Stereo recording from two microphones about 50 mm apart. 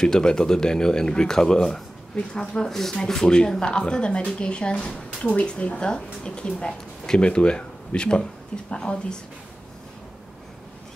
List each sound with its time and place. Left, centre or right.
0.0 s speech: centre